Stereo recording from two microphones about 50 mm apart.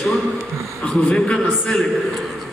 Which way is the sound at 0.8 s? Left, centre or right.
Centre.